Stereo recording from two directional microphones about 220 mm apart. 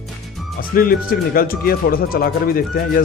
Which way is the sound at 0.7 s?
40° left (ahead or behind).